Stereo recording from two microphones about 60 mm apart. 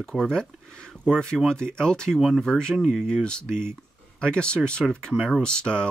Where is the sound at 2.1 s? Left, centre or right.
Centre.